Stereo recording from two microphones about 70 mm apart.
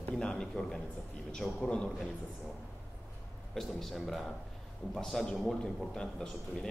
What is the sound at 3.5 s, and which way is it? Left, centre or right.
A man's voice, centre.